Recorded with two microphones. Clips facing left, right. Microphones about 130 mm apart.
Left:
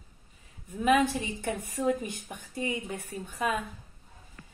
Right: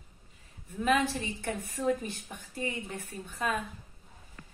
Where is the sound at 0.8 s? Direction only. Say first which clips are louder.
Left 3 dB; 15° left (ahead or behind).